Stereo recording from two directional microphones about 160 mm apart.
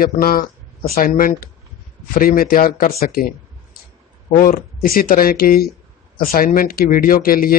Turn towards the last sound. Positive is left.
turn(degrees=65)  # may be behind; listen again after turning